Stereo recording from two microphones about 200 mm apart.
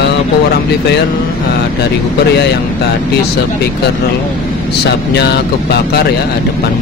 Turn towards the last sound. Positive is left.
turn(degrees=55)  # may be behind; listen again after turning